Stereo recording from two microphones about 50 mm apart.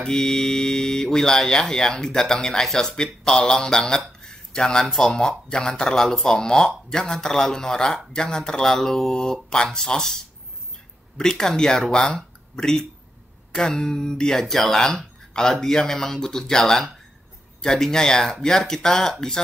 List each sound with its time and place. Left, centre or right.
0.0 s speech: centre